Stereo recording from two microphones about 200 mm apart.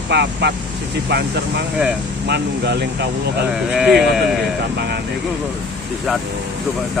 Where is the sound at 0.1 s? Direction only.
60° right (ahead or behind).